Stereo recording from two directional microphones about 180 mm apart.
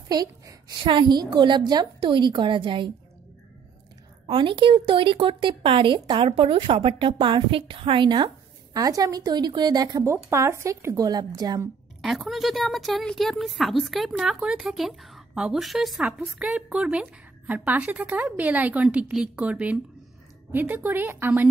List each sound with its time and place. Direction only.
0.1 s speech: 20° right (ahead or behind)
4.3 s speech: 30° right (ahead or behind)
12.0 s a woman's voice: centre (ahead or behind)